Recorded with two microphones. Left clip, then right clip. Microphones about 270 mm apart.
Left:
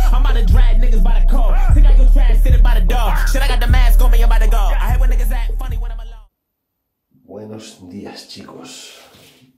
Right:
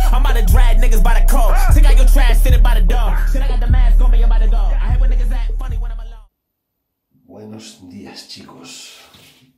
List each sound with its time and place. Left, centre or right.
0.0 s music: centre; by 1.1 s right
1.1 s music: right
2.4 s music: centre
2.9 s music: centre
3.3 s music: left
3.6 s music: left
4.5 s music: left; by 6.2 s centre
7.5 s music: centre